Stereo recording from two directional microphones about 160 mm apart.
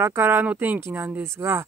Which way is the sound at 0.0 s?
15° right (ahead or behind).